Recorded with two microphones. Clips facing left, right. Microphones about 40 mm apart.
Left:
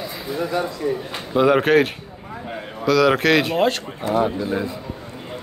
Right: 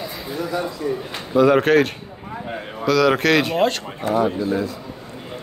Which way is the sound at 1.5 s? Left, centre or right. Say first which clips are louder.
Even; centre.